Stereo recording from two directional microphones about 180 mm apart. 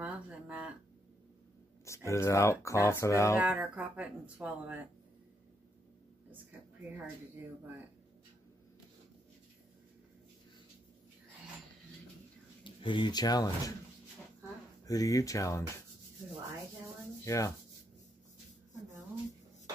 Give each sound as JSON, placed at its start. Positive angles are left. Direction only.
{"t": 0.0, "sound": "a sound", "side_deg": -5}
{"t": 1.9, "sound": "speech", "side_deg": 15}
{"t": 3.3, "sound": "speech", "side_deg": -10}
{"t": 12.6, "sound": "speech", "side_deg": 25}
{"t": 14.9, "sound": "speech", "side_deg": 20}
{"t": 17.2, "sound": "sanding", "side_deg": 15}